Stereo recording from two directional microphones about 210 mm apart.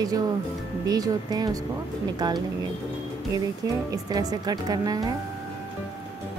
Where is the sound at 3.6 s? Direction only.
15° right (ahead or behind).